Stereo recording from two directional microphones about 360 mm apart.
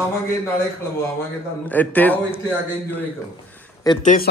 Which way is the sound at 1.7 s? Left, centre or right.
Centre.